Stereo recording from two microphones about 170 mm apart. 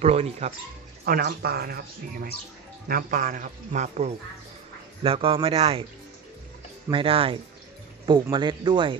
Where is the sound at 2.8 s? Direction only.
55° right (ahead or behind).